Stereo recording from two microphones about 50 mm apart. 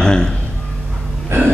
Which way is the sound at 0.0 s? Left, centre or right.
Centre.